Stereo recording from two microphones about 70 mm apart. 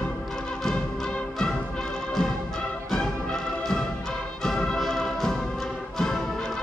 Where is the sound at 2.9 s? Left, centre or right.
Centre.